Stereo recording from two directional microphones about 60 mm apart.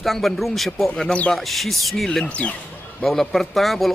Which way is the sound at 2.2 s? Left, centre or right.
Left.